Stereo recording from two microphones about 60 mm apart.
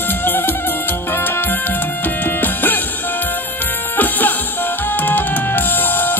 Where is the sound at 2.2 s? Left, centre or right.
Left.